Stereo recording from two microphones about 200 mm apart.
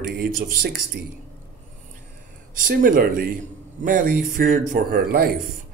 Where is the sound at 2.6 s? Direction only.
45° right (ahead or behind).